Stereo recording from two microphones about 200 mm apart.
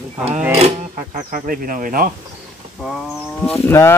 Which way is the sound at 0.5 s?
35° right (ahead or behind).